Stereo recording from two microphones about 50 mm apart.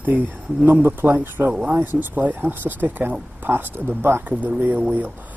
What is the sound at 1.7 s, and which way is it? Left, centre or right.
Speech, right.